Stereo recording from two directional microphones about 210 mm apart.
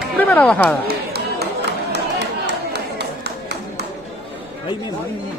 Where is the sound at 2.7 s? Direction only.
55° right (ahead or behind).